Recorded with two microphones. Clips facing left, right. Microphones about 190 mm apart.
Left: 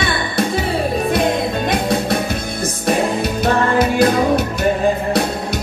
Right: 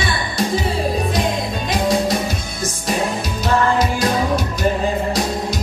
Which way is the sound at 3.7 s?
60° left (ahead or behind).